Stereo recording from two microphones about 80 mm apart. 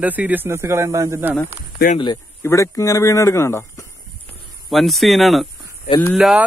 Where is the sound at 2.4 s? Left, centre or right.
Left.